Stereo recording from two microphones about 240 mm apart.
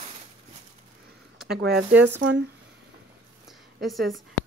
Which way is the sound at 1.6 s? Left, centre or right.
Right.